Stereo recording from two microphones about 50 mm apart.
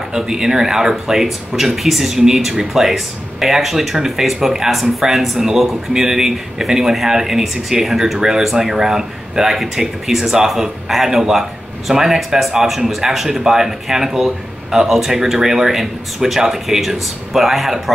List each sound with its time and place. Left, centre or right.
0.1 s speech: centre